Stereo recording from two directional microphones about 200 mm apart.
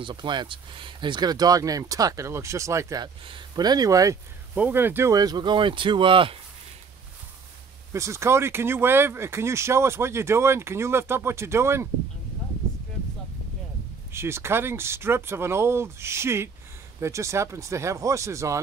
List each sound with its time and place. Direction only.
0.0 s speech: 20° right (ahead or behind)
7.9 s speech: 15° right (ahead or behind)
14.1 s speech: 10° right (ahead or behind)